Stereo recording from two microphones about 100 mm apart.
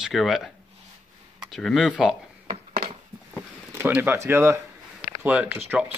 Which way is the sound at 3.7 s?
20° right (ahead or behind).